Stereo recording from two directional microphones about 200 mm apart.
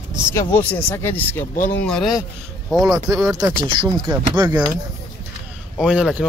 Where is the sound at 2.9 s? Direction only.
15° right (ahead or behind).